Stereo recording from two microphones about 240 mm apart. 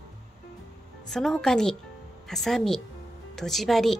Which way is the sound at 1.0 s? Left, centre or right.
Centre.